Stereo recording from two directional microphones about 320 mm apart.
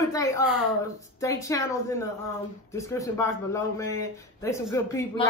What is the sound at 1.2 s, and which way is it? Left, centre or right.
A man's voice, centre.